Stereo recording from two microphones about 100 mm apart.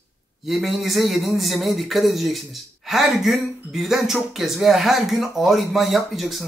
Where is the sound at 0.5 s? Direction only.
Centre (ahead or behind).